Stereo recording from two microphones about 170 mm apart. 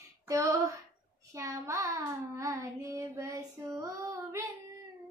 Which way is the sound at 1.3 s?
20° right (ahead or behind).